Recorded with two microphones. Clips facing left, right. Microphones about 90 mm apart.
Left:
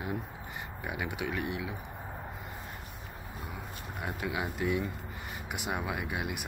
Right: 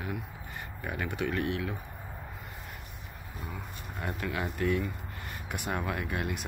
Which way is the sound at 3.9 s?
15° left (ahead or behind).